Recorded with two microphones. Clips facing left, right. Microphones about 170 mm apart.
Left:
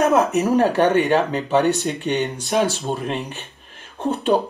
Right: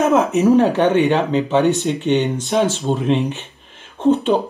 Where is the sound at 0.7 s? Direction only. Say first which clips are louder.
Right 2 dB; 20° right (ahead or behind).